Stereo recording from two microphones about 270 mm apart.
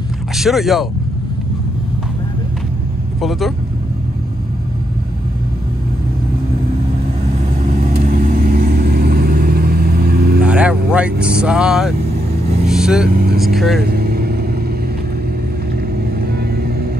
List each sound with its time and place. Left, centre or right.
0.4 s speech: centre
3.2 s speech: centre
7.7 s vehicle: right
10.4 s speech: centre
12.6 s vehicle: centre
13.1 s speech: right
13.7 s vehicle: right
16.2 s vehicle: right